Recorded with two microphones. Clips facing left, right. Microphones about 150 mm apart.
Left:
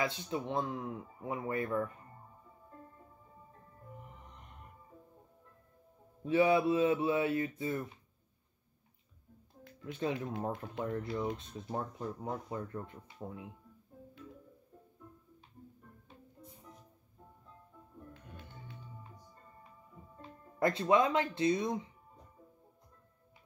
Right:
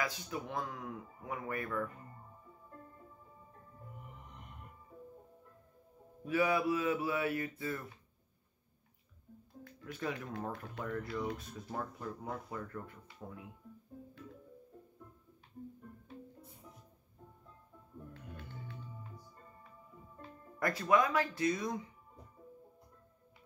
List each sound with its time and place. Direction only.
0.0 s speech: 25° left (ahead or behind)
6.2 s speech: 25° left (ahead or behind)
9.8 s speech: 25° left (ahead or behind)
20.2 s speech: 25° left (ahead or behind)